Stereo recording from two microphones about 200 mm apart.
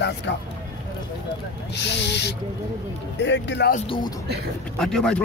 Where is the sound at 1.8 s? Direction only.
60° left (ahead or behind).